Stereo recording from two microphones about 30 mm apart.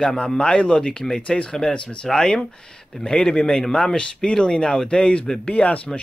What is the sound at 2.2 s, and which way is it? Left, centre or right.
Speech, left.